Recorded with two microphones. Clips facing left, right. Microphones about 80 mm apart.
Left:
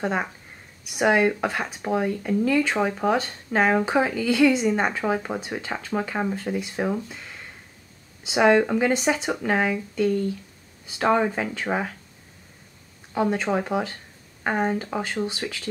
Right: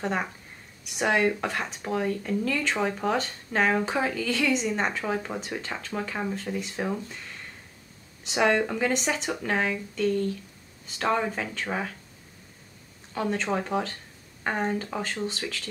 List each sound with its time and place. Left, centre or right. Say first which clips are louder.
0.0 s speech: left 3 dB; centre
5.6 s speech: left 5 dB; centre
13.1 s speech: left 4 dB; centre